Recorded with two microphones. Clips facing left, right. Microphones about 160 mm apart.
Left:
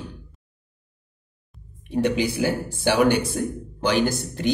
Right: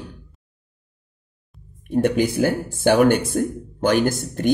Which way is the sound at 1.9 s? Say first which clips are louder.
Right 3 dB; 50° right (ahead or behind).